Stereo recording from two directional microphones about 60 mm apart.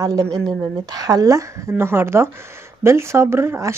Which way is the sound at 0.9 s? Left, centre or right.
Right.